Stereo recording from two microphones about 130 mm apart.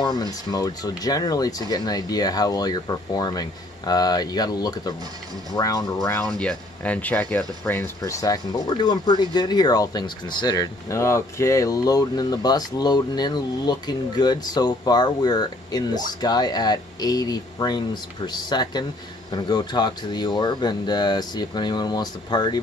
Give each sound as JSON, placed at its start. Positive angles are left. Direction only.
{"t": 0.0, "sound": "speech", "side_deg": 35}
{"t": 6.4, "sound": "speech", "side_deg": 10}
{"t": 8.0, "sound": "speech", "side_deg": 25}